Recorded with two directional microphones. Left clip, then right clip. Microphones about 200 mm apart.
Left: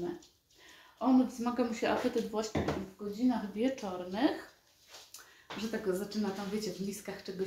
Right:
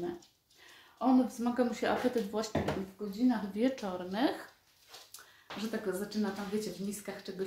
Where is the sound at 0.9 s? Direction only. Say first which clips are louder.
Even; 10° right (ahead or behind).